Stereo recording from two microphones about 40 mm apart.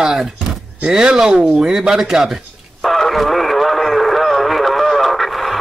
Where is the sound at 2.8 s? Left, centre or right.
Centre.